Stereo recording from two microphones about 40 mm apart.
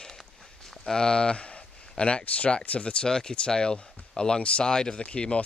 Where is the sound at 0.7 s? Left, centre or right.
Centre; by 3.1 s left.